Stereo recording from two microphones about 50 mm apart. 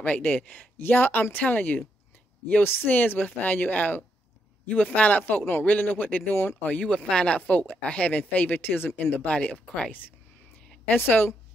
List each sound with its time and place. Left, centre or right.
0.0 s speech: left
0.7 s speech: left
2.6 s speech: left
2.9 s speech: left
5.4 s speech: left
5.7 s speech: left
6.8 s speech: centre
7.3 s speech: left
8.5 s speech: left
9.2 s speech: left
10.9 s speech: left